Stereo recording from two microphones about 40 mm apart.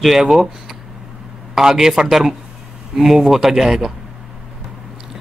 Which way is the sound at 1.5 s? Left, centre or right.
Centre.